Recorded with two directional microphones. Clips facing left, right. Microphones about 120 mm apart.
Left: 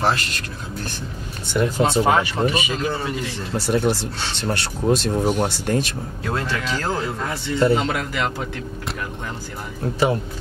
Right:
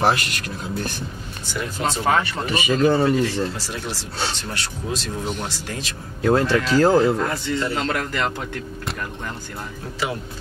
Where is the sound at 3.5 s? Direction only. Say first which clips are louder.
Left 10 dB; 55° left (ahead or behind).